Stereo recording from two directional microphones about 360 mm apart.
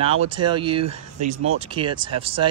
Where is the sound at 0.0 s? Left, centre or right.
Centre.